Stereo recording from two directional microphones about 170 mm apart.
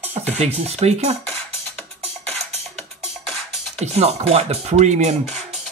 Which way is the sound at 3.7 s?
40° right (ahead or behind).